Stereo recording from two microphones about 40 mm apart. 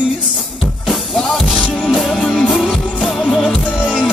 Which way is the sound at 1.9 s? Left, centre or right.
Centre.